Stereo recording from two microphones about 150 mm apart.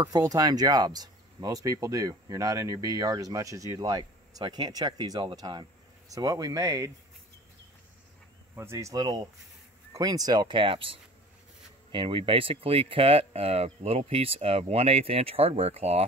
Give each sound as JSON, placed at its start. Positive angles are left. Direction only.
{"t": 0.1, "sound": "speech", "side_deg": -25}
{"t": 8.5, "sound": "speech", "side_deg": -20}